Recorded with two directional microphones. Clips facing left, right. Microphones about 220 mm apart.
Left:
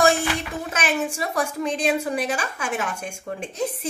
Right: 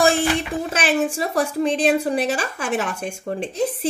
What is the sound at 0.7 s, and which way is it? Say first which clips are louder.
A woman's voice: right 4 dB; 30° right (ahead or behind).